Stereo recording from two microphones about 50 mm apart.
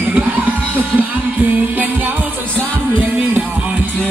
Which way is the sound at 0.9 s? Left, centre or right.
Right.